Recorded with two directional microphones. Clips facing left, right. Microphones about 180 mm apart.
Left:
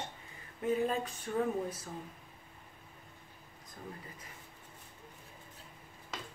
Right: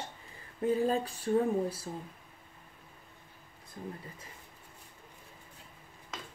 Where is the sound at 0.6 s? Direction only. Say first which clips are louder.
Right 3 dB; 35° right (ahead or behind).